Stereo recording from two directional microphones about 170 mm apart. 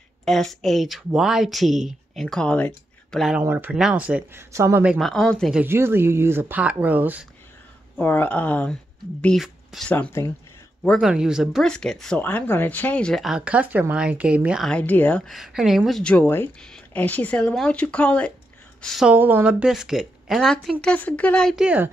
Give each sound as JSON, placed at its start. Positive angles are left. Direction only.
{"t": 0.2, "sound": "speech", "side_deg": 0}
{"t": 4.9, "sound": "speech", "side_deg": 0}
{"t": 5.6, "sound": "speech", "side_deg": -15}
{"t": 8.0, "sound": "speech", "side_deg": 10}
{"t": 9.9, "sound": "speech", "side_deg": 15}
{"t": 10.8, "sound": "speech", "side_deg": 0}